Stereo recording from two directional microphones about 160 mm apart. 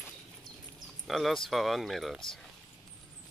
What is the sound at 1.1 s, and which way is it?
Speech, centre (ahead or behind).